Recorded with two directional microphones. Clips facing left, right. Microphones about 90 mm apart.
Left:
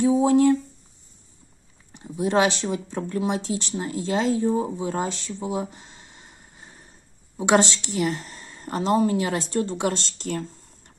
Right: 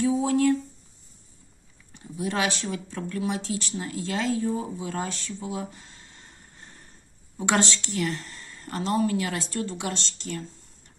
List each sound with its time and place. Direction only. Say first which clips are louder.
0.0 s speech: left 5 dB; 25° left (ahead or behind)
2.0 s speech: left 7 dB; 25° left (ahead or behind); by 10.4 s 45° left (ahead or behind)